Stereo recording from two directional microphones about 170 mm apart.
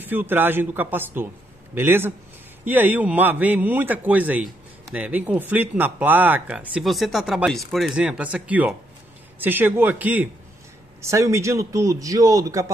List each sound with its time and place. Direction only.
0.0 s speech: 10° right (ahead or behind)